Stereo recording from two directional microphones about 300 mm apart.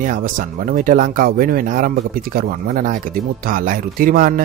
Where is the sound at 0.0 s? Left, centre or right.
Right.